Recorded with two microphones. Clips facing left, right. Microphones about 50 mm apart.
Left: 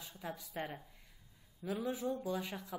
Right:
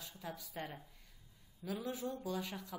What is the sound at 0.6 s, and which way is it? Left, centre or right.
A woman's voice, centre.